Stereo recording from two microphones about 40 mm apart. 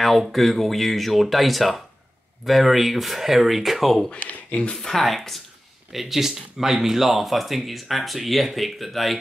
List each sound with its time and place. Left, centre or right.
0.3 s speech: centre
4.2 s speech: left
4.8 s speech: centre
5.9 s speech: centre